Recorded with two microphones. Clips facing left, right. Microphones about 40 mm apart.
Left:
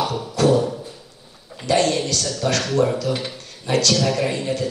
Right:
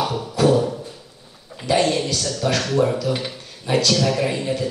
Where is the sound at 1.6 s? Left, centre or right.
Centre.